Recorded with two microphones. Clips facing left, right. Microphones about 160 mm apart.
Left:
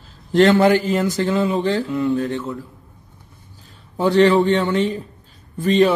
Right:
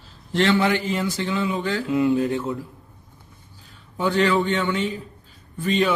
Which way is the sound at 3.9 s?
35° left (ahead or behind).